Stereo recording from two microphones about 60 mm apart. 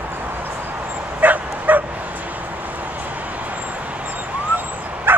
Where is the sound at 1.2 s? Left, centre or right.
Right.